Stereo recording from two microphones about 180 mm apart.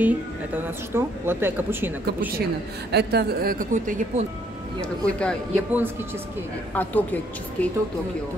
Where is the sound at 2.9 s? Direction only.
65° right (ahead or behind); by 4.2 s 45° right (ahead or behind).